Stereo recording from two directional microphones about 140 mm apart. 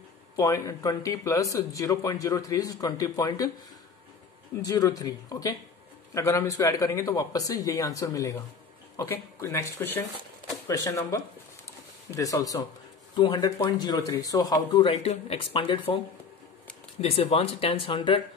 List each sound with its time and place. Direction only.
0.4 s speech: 25° left (ahead or behind)
4.6 s speech: 25° left (ahead or behind)
14.7 s speech: 40° left (ahead or behind)
17.0 s speech: 45° left (ahead or behind)